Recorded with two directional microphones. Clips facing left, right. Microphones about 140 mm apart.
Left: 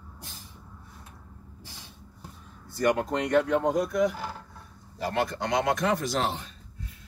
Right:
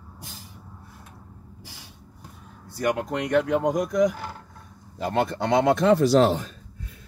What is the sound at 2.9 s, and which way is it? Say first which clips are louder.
A man's voice: right 1 dB; 15° right (ahead or behind).